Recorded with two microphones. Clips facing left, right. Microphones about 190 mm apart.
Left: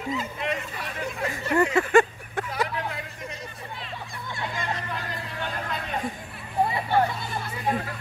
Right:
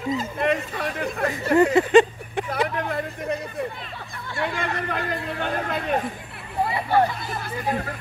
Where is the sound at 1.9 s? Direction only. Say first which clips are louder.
Right 4 dB; 20° right (ahead or behind).